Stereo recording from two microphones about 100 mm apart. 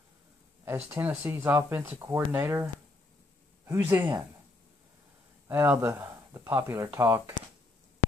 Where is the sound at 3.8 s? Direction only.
20° right (ahead or behind).